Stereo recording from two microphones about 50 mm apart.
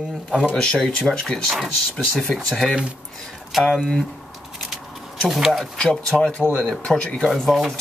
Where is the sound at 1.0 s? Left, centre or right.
Centre.